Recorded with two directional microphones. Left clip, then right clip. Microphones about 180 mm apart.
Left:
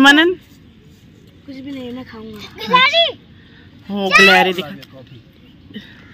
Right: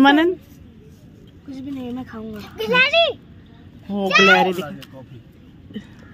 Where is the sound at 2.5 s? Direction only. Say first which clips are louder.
Left 4 dB; centre (ahead or behind).